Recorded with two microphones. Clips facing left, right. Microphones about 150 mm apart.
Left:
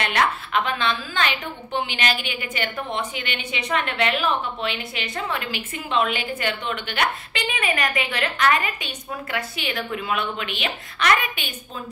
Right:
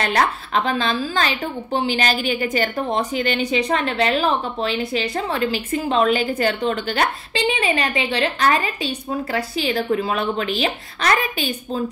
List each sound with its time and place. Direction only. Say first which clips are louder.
0.0 s a woman's voice: right 3 dB; 35° right (ahead or behind)